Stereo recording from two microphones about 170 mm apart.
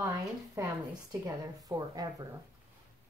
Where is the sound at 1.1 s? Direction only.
20° right (ahead or behind).